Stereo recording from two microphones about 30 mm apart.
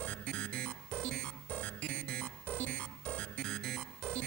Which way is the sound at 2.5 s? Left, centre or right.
Left.